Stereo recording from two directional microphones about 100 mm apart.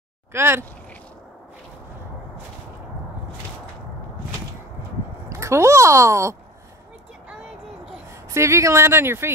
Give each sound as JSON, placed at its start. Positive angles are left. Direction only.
{"t": 0.3, "sound": "speech", "side_deg": -25}
{"t": 5.3, "sound": "speech", "side_deg": -30}
{"t": 8.3, "sound": "speech", "side_deg": -30}